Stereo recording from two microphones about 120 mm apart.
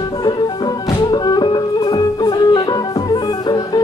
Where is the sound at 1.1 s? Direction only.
30° left (ahead or behind).